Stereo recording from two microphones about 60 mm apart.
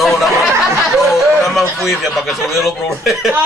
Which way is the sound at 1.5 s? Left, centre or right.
Centre.